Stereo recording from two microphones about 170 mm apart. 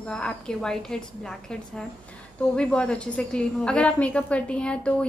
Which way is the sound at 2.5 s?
5° left (ahead or behind).